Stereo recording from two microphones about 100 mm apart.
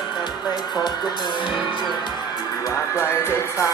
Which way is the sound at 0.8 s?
50° left (ahead or behind).